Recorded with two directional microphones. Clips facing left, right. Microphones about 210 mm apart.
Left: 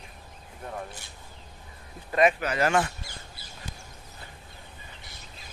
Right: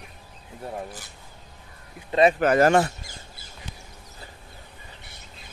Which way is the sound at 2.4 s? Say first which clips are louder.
Right 7 dB; 45° right (ahead or behind).